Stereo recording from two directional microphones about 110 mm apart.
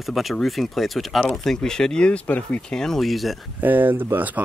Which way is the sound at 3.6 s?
15° right (ahead or behind).